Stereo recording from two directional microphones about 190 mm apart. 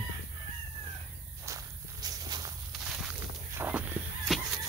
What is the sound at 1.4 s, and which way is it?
Walk, 20° right (ahead or behind).